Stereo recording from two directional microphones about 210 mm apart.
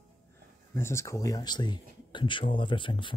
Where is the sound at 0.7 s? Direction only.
10° left (ahead or behind).